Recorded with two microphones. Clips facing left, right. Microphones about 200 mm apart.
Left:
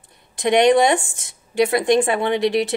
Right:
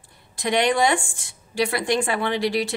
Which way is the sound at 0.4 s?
20° left (ahead or behind).